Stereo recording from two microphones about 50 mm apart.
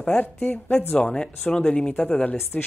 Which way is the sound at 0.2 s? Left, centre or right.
Left.